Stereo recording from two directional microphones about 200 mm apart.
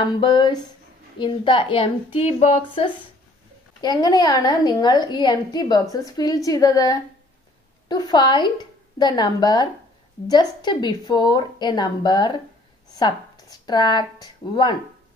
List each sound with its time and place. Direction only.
0.2 s a woman's voice: 20° left (ahead or behind)